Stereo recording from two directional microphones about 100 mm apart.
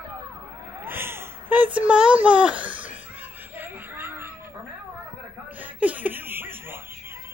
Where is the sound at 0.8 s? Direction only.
20° right (ahead or behind).